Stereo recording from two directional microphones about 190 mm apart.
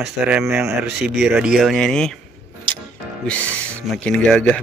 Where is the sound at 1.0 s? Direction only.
60° right (ahead or behind).